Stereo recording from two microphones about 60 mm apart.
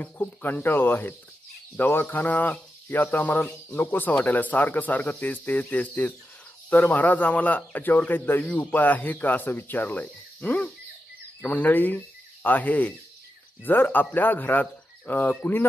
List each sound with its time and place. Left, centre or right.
0.0 s speech: left